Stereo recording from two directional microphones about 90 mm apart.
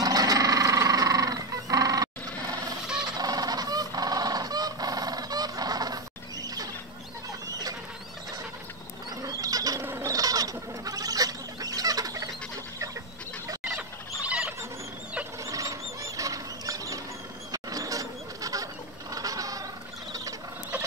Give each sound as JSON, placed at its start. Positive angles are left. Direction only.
{"t": 0.0, "sound": "music", "side_deg": -45}
{"t": 3.2, "sound": "goose", "side_deg": -45}
{"t": 7.4, "sound": "rodents", "side_deg": -45}
{"t": 9.2, "sound": "a sound", "side_deg": -40}
{"t": 9.8, "sound": "bird", "side_deg": -35}
{"t": 14.2, "sound": "fowl", "side_deg": -15}
{"t": 15.4, "sound": "a sound", "side_deg": -35}